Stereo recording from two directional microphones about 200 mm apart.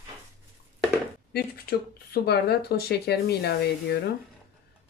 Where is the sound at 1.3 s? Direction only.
50° left (ahead or behind).